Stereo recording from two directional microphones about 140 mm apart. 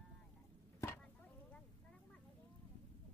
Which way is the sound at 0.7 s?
20° left (ahead or behind).